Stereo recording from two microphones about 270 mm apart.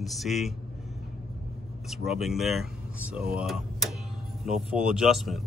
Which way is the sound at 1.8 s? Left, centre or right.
Centre.